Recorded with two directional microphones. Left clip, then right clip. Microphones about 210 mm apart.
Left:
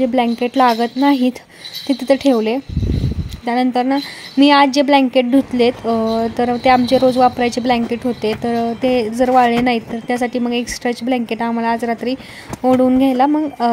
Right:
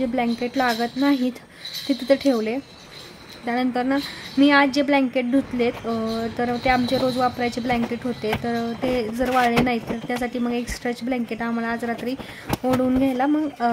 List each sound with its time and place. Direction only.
0.0 s a woman's voice: 20° left (ahead or behind)